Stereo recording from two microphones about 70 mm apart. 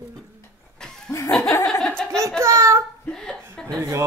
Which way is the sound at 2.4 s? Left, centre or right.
Right.